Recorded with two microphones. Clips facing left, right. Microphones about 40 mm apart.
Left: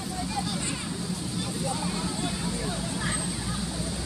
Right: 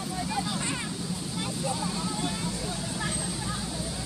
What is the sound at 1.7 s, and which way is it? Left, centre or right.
Vehicle, centre.